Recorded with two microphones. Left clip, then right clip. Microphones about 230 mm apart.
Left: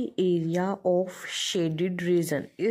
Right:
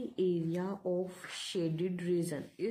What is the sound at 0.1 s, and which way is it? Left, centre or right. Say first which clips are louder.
Speech: left 6 dB; left.